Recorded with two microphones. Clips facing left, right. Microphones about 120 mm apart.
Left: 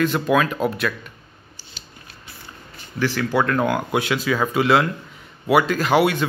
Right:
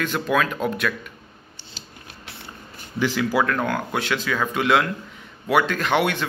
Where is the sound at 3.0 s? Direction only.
15° right (ahead or behind).